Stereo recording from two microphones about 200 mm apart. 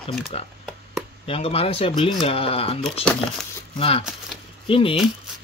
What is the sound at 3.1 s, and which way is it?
Speech, centre (ahead or behind).